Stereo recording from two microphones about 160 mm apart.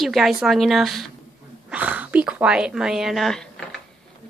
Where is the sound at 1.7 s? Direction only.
10° right (ahead or behind).